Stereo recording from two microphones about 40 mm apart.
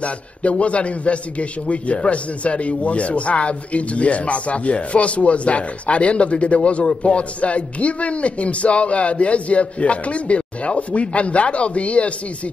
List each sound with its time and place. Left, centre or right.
0.0 s a man's voice: left